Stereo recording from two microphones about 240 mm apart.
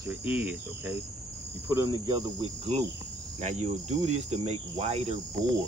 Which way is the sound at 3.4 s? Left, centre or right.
Right.